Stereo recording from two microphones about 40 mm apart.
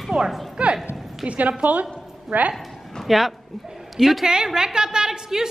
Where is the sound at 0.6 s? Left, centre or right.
Right.